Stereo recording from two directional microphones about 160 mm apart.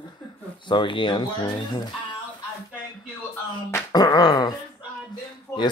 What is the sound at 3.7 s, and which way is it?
Speech, 25° left (ahead or behind).